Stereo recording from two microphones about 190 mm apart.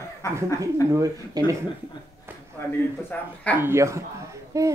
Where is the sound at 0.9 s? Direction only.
15° right (ahead or behind).